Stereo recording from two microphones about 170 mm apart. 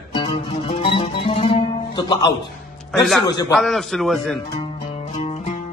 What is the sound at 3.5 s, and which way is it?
Speech, centre (ahead or behind).